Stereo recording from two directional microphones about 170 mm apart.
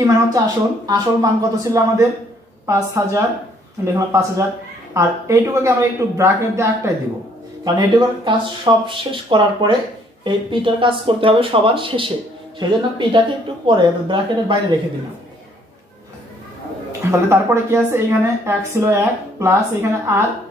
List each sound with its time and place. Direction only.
0.0 s a woman's voice: 20° right (ahead or behind)
17.0 s a woman's voice: 15° right (ahead or behind)